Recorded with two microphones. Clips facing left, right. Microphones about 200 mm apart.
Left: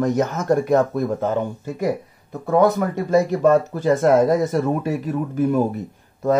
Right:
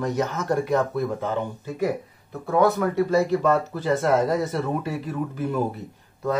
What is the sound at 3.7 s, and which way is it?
Speech, 45° left (ahead or behind).